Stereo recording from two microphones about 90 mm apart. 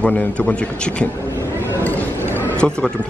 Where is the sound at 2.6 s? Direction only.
10° left (ahead or behind).